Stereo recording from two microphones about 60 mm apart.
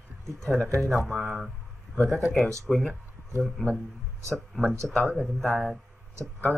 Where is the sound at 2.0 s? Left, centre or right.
Centre.